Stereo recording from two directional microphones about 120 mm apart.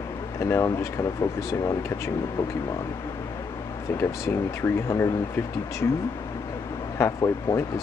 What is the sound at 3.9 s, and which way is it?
Speech, 20° left (ahead or behind).